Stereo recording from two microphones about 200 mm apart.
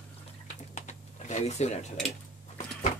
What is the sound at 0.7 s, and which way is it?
Typing, 35° left (ahead or behind).